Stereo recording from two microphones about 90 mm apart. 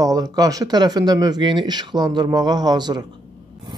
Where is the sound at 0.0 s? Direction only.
45° right (ahead or behind).